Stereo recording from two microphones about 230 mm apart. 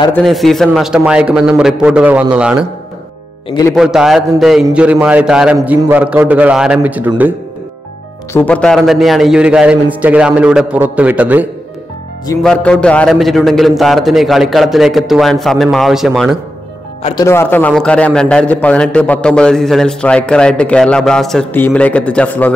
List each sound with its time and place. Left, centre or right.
0.1 s a man's voice: centre
3.4 s speech: centre
3.7 s a man's voice: centre
8.3 s a man's voice: centre
12.4 s a man's voice: centre
17.0 s a man's voice: centre